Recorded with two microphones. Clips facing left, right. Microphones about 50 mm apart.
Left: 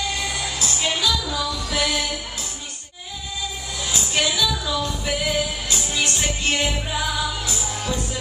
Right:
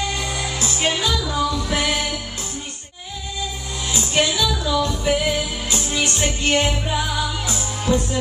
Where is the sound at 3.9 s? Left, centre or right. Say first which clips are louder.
Right 3 dB; centre.